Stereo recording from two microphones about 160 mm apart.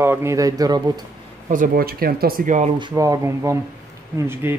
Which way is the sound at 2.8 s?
20° right (ahead or behind).